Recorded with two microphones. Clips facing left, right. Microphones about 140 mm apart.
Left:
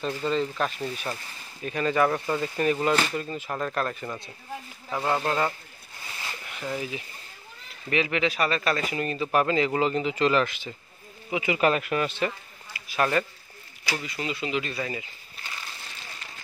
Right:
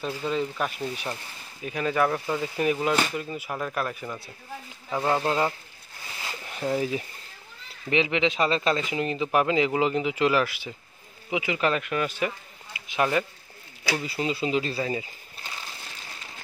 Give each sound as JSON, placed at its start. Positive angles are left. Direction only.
{"t": 0.0, "sound": "speech", "side_deg": -10}
{"t": 5.1, "sound": "speech", "side_deg": -15}
{"t": 6.4, "sound": "speech", "side_deg": -35}
{"t": 7.9, "sound": "speech", "side_deg": -20}
{"t": 11.4, "sound": "speech", "side_deg": 5}
{"t": 12.1, "sound": "speech", "side_deg": -10}
{"t": 12.7, "sound": "speech", "side_deg": -20}
{"t": 14.0, "sound": "speech", "side_deg": -30}